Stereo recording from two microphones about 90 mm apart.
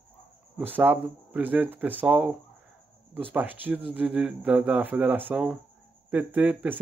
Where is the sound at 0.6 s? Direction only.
20° right (ahead or behind).